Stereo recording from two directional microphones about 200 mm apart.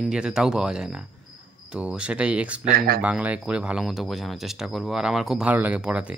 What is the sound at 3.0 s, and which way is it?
Speech, 5° right (ahead or behind).